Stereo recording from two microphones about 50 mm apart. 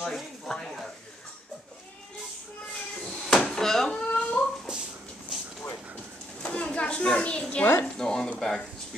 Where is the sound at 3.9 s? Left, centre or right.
Left.